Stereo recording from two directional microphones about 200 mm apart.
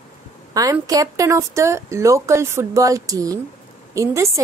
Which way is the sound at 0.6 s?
20° right (ahead or behind).